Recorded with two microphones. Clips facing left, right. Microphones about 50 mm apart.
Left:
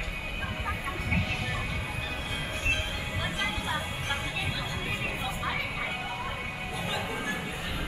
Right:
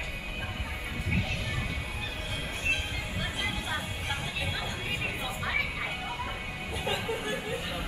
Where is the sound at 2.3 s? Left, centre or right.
Centre.